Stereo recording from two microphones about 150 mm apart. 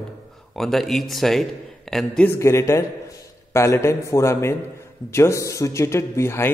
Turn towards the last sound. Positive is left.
turn(degrees=15)  # may be behind; listen again after turning